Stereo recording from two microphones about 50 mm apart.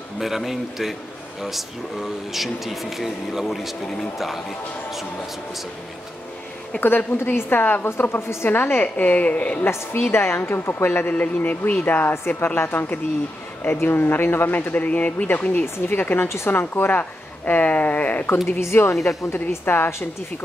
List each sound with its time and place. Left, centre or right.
0.2 s speech: centre
6.8 s speech: left
8.8 s speech: left
10.1 s speech: left
11.1 s speech: left
15.2 s speech: left
17.0 s speech: left
18.6 s a woman's voice: left
19.6 s speech: left